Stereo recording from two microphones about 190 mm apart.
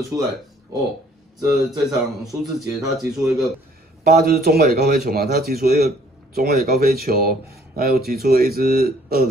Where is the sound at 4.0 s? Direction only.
55° right (ahead or behind).